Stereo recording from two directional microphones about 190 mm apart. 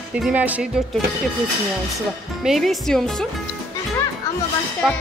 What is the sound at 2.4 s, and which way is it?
Speech, centre (ahead or behind).